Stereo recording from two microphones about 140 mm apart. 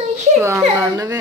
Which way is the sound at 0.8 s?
25° right (ahead or behind).